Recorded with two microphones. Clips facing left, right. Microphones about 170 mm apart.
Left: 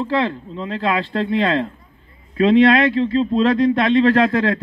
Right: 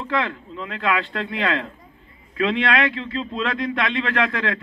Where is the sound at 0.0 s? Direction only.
35° left (ahead or behind).